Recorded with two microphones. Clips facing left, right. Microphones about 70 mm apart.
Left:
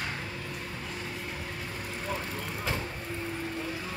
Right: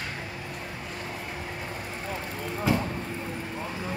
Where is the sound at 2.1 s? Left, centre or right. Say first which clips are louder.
Right 3 dB; right.